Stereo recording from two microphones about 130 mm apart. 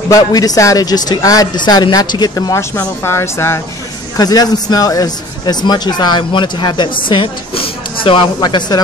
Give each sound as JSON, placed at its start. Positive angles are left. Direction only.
{"t": 0.1, "sound": "speech", "side_deg": 30}
{"t": 3.0, "sound": "speech", "side_deg": 20}
{"t": 4.2, "sound": "speech", "side_deg": 30}